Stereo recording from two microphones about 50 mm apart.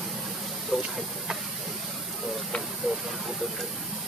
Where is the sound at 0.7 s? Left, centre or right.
Centre.